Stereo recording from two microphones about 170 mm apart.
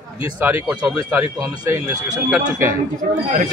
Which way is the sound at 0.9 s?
15° right (ahead or behind).